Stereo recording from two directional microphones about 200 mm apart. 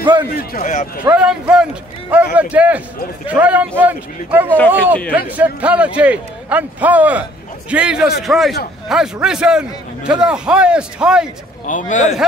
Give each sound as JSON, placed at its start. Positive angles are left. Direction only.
{"t": 0.4, "sound": "a man's voice", "side_deg": 45}
{"t": 1.0, "sound": "a man's voice", "side_deg": -5}
{"t": 11.6, "sound": "a man's voice", "side_deg": 40}